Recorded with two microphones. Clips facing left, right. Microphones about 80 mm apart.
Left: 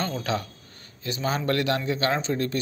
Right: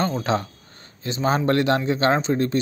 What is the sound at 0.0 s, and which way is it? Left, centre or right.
A man's voice, right.